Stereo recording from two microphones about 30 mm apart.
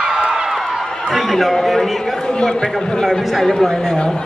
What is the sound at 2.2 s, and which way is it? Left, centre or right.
A man's voice, left.